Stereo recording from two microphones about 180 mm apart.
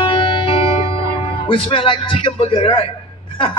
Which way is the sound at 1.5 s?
30° left (ahead or behind).